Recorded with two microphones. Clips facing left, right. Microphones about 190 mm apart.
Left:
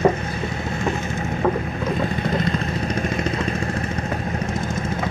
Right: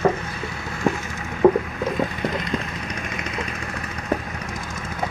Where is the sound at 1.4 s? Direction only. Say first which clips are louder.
Right 6 dB; 20° right (ahead or behind).